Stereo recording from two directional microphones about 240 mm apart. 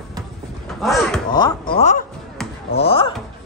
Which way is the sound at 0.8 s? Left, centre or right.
Centre.